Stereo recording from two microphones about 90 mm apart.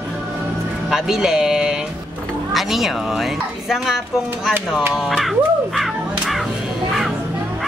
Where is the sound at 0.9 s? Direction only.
5° right (ahead or behind).